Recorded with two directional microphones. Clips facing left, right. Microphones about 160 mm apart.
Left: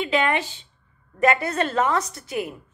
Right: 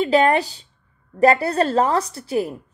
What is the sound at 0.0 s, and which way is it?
A woman's voice, 40° right (ahead or behind).